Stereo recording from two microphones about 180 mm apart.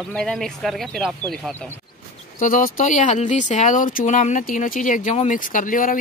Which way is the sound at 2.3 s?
45° left (ahead or behind).